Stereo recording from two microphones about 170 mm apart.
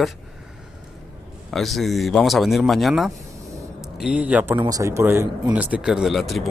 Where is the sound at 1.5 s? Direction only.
Centre (ahead or behind).